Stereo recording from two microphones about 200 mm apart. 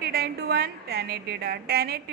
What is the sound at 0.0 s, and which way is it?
A woman's voice, 50° right (ahead or behind).